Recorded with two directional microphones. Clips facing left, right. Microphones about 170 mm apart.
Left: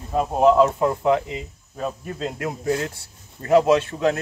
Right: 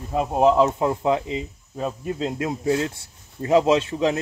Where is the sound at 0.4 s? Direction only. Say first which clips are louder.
Left 2 dB; 20° right (ahead or behind).